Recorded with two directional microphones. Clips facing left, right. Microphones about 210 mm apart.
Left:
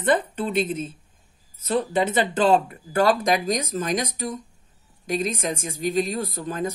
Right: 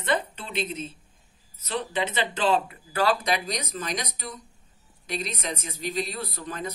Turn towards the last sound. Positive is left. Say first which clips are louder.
# left 7 dB
turn(degrees=45)  # may be behind; listen again after turning